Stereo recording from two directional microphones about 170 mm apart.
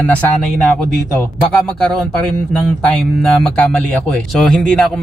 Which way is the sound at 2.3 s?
5° left (ahead or behind).